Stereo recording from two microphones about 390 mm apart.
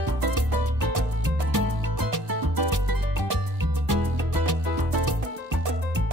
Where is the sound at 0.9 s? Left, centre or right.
Right.